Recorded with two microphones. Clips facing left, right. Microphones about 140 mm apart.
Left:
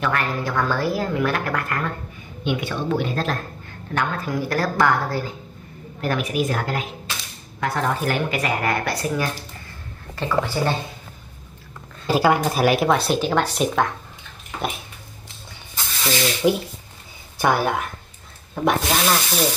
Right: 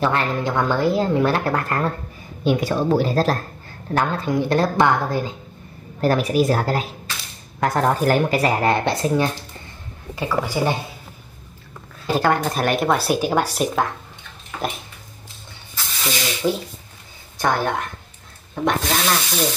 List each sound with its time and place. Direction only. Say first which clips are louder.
0.0 s a woman's voice: right 3 dB; 25° right (ahead or behind)
5.9 s speech: right 5 dB; 35° right (ahead or behind)
10.1 s speech: even; 10° right (ahead or behind)
12.1 s speech: left 1 dB; 10° left (ahead or behind)
16.4 s speech: left 2 dB; 5° left (ahead or behind)
18.5 s rub: left 1 dB; 5° left (ahead or behind)